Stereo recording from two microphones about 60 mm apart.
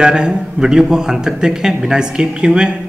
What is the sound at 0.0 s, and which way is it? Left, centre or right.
A man's voice, centre.